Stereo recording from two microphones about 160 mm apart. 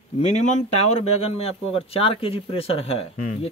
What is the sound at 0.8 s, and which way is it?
Speech, 40° left (ahead or behind).